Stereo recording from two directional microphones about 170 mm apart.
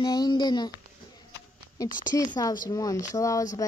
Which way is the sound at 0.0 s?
25° left (ahead or behind).